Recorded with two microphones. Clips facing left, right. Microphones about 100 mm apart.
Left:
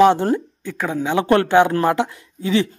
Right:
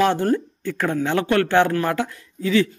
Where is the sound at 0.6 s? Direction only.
5° left (ahead or behind).